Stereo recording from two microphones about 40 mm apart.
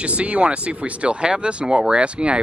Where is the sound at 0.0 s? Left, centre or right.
Right.